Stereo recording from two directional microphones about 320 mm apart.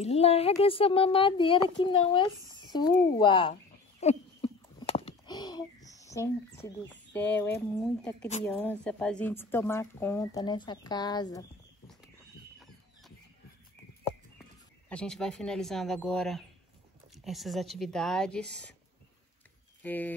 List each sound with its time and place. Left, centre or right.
0.0 s speech: centre
4.0 s a sound: centre
8.5 s speech: centre
14.9 s speech: centre
19.8 s speech: centre